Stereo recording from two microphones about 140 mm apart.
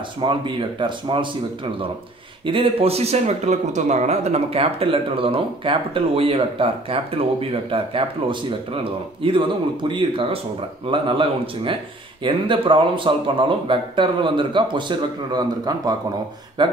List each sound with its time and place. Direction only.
0.2 s speech: 35° right (ahead or behind)
2.4 s speech: 40° right (ahead or behind)